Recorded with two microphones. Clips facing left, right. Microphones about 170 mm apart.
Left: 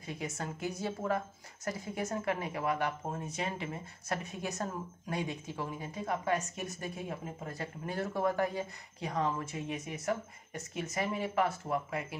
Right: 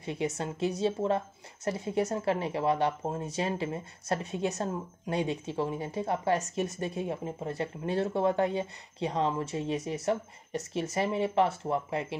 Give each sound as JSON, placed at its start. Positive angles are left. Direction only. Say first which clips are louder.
{"t": 0.0, "sound": "a woman's voice", "louder": "right 7 dB", "side_deg": -30}